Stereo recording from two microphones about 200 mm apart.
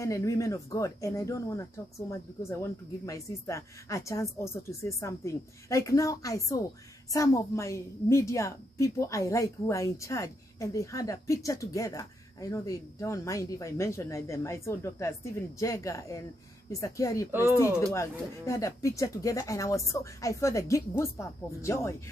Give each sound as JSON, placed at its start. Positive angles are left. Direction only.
{"t": 0.0, "sound": "a woman's voice", "side_deg": 15}
{"t": 17.3, "sound": "speech", "side_deg": -10}
{"t": 17.6, "sound": "a woman's voice", "side_deg": 15}